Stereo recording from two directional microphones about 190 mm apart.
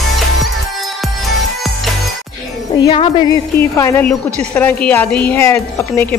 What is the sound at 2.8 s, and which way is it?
Speech, 30° left (ahead or behind).